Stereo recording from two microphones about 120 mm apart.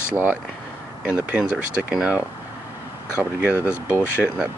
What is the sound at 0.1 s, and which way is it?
Speech, 15° right (ahead or behind).